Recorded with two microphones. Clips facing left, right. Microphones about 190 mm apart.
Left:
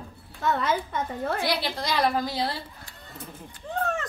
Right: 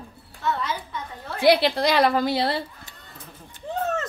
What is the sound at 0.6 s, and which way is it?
Speech, 55° left (ahead or behind).